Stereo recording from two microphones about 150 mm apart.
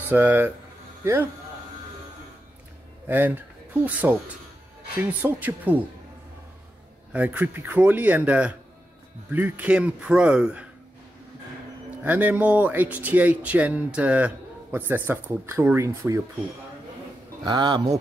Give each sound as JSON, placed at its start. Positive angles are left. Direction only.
{"t": 0.1, "sound": "speech", "side_deg": -15}
{"t": 3.1, "sound": "speech", "side_deg": -10}
{"t": 7.1, "sound": "speech", "side_deg": -10}
{"t": 12.0, "sound": "speech", "side_deg": -10}
{"t": 17.4, "sound": "a man's voice", "side_deg": -30}